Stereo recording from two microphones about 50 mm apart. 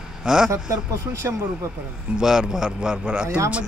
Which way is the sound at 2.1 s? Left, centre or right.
Centre.